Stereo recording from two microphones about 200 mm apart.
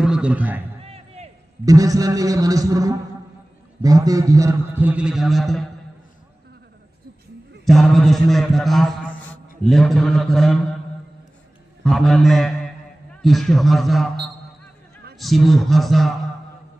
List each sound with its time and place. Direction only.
0.0 s a man's voice: 5° right (ahead or behind)
0.8 s a sound: 30° right (ahead or behind)
1.7 s a man's voice: 15° right (ahead or behind); by 5.7 s centre (ahead or behind)
7.6 s a man's voice: centre (ahead or behind)
11.8 s a man's voice: centre (ahead or behind)
15.1 s a man's voice: centre (ahead or behind)